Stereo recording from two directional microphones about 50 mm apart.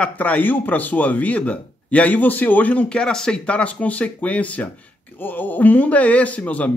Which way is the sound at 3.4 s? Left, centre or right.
Left.